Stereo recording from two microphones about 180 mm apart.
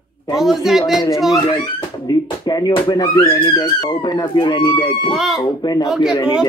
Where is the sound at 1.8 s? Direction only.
25° left (ahead or behind).